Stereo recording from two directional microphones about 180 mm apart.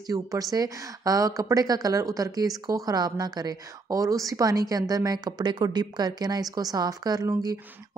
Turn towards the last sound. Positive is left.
turn(degrees=-20)  # may be behind; listen again after turning